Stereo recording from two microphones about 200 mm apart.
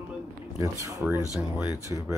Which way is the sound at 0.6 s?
15° right (ahead or behind).